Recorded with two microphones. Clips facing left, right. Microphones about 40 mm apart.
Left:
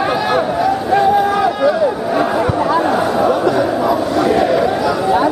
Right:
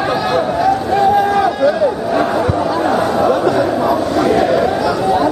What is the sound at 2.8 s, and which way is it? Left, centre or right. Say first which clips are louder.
Chatter: right 1 dB; centre.